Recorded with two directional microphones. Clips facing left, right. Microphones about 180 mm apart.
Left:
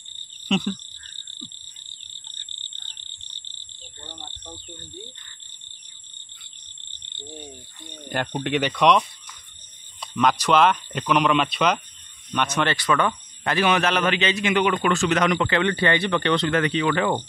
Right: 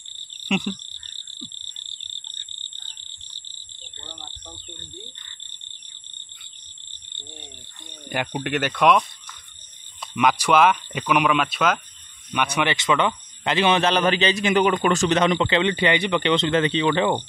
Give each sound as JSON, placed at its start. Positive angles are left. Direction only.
{"t": 0.5, "sound": "frog", "side_deg": -10}
{"t": 8.1, "sound": "speech", "side_deg": -5}
{"t": 10.1, "sound": "speech", "side_deg": -10}
{"t": 12.3, "sound": "speech", "side_deg": -15}
{"t": 15.1, "sound": "speech", "side_deg": -25}